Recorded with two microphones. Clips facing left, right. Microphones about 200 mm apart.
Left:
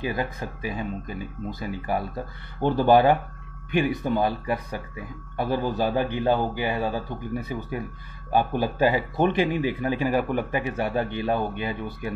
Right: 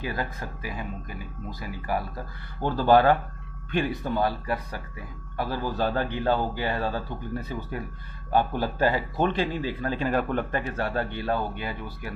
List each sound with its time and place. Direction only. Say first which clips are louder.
0.0 s speech: left 3 dB; 20° left (ahead or behind)